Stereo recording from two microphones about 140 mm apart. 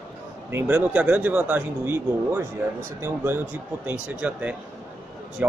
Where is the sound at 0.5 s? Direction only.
10° right (ahead or behind).